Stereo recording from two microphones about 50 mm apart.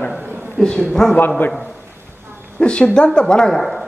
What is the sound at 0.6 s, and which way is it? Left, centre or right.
Speech, centre.